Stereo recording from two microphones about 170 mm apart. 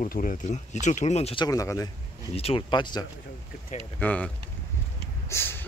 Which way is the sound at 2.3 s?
35° left (ahead or behind).